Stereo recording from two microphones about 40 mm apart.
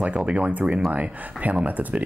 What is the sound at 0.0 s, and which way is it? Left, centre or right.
Speech, right.